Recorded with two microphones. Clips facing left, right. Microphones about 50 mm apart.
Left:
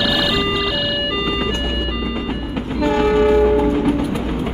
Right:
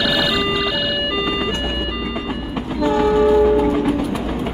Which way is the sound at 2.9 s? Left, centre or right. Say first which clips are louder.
Even; left.